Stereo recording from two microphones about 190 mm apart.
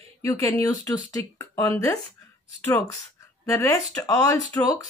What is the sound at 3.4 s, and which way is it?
Speech, 15° left (ahead or behind).